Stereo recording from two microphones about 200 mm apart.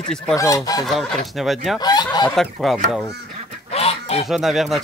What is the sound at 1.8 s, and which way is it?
Speech, 20° left (ahead or behind).